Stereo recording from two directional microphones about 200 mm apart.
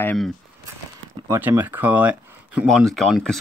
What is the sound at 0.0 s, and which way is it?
Speech, 5° left (ahead or behind).